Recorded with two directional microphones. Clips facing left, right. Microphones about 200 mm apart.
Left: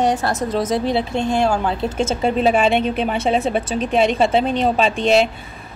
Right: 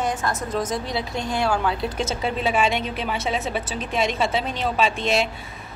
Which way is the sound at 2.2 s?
35° left (ahead or behind).